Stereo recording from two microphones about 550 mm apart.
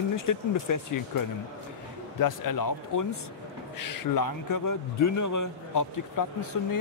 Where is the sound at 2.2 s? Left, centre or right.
Left.